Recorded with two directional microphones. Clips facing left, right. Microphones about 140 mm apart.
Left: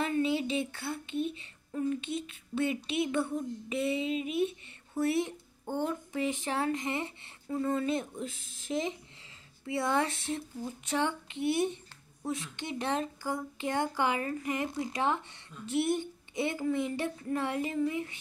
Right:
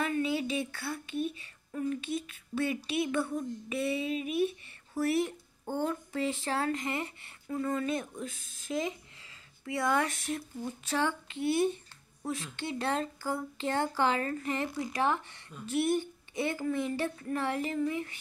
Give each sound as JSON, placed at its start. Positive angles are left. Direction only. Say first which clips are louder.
{"t": 0.0, "sound": "speech", "louder": "left 1 dB", "side_deg": 25}